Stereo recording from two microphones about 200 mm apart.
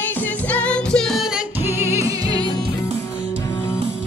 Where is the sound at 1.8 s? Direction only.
15° right (ahead or behind).